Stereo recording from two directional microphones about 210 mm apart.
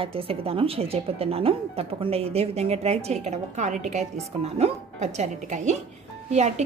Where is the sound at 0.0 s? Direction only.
25° right (ahead or behind).